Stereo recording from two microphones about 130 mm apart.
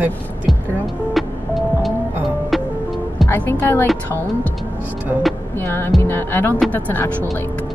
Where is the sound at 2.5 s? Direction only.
Centre (ahead or behind).